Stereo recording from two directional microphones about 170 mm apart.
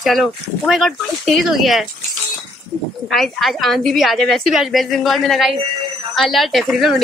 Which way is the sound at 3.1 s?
Centre (ahead or behind).